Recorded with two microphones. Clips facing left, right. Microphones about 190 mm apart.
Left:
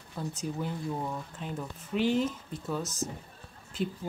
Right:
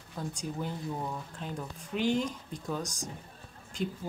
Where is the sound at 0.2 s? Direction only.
5° left (ahead or behind).